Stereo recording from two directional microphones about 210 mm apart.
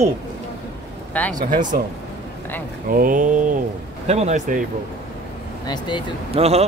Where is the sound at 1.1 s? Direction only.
5° left (ahead or behind).